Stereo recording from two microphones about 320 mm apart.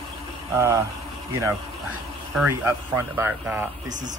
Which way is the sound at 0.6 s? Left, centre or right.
Centre.